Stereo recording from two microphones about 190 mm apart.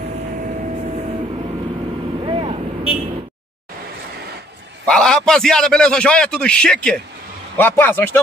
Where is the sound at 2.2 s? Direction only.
30° right (ahead or behind).